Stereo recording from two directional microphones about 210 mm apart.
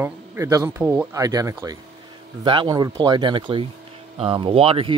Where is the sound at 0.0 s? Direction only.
10° right (ahead or behind).